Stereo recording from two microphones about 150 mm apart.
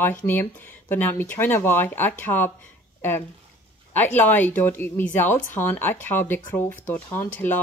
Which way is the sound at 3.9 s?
10° left (ahead or behind).